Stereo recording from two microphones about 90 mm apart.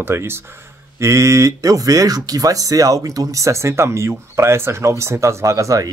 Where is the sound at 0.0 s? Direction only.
25° right (ahead or behind).